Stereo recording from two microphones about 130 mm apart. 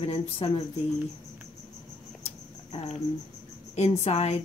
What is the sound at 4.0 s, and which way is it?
Speech, 55° left (ahead or behind).